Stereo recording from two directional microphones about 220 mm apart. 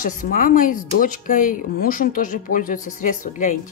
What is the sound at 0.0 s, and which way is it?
Speech, 40° left (ahead or behind).